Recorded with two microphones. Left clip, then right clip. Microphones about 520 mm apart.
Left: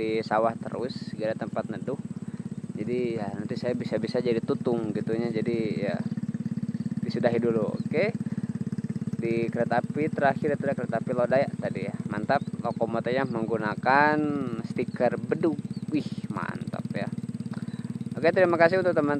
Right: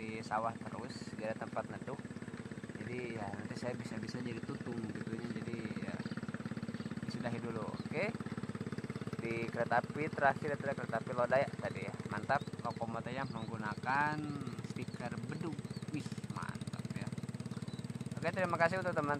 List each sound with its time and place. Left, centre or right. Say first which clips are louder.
0.3 s speech: left 9 dB; centre
2.9 s speech: left 15 dB; centre
7.3 s speech: left 16 dB; centre
9.2 s speech: left 11 dB; centre
18.2 s speech: left 13 dB; centre